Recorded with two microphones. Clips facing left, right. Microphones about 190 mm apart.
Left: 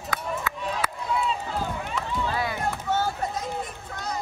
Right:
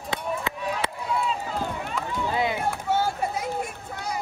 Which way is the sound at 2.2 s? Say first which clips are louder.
Right 3 dB; 20° right (ahead or behind).